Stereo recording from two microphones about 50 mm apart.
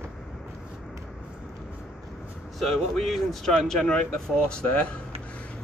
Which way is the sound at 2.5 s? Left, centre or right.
Centre.